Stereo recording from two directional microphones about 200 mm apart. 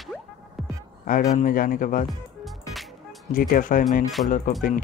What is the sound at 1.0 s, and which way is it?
Speech, 45° left (ahead or behind).